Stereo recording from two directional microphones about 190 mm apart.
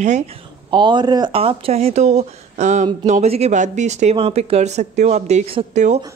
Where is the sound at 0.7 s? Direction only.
25° right (ahead or behind).